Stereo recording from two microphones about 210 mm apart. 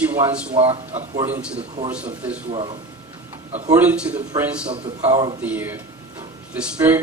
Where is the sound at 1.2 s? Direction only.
10° right (ahead or behind).